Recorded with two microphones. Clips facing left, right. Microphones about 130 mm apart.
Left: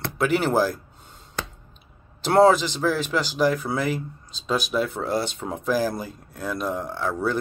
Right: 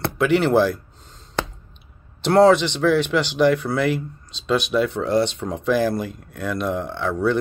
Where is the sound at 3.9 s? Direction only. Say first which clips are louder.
Right 4 dB; 40° left (ahead or behind).